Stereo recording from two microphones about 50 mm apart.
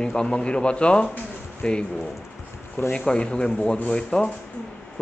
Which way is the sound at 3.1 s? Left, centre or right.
Centre.